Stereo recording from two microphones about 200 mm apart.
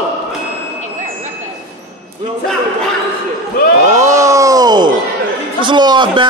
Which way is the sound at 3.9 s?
15° right (ahead or behind).